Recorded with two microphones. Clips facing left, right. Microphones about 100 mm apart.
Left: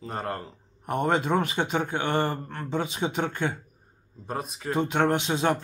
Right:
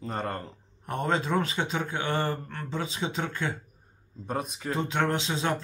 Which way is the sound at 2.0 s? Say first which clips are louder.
Left 2 dB; 20° left (ahead or behind).